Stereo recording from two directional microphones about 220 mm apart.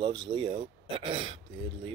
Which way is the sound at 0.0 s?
20° right (ahead or behind).